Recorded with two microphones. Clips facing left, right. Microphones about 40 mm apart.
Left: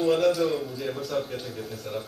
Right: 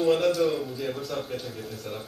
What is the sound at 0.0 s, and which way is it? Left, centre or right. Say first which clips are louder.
A man's voice: even; centre.